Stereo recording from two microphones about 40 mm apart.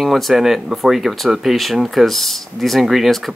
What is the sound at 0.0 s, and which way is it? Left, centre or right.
Speech, centre.